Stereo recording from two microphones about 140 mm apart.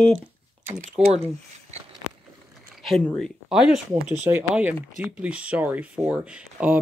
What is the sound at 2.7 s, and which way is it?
Speech, centre (ahead or behind).